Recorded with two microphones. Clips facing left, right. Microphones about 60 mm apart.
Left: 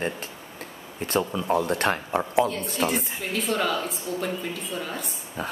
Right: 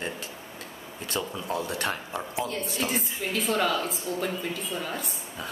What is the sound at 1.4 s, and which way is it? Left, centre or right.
Speech, left.